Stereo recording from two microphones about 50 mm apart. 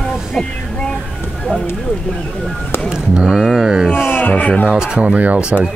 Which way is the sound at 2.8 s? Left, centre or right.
Centre.